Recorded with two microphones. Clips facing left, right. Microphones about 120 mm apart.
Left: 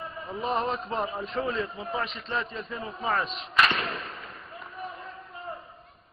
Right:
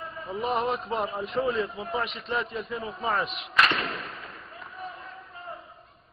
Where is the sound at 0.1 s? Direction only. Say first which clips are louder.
Right 1 dB; centre (ahead or behind).